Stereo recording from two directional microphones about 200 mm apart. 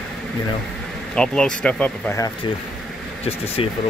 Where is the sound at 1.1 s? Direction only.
5° left (ahead or behind).